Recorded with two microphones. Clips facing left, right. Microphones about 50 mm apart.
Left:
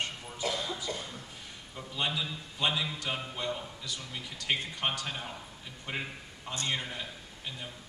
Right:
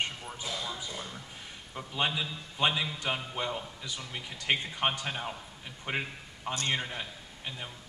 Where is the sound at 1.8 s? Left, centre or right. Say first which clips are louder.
Right 2 dB; centre.